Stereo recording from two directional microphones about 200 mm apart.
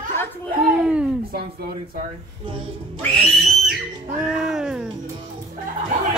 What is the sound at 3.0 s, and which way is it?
Speech, centre (ahead or behind).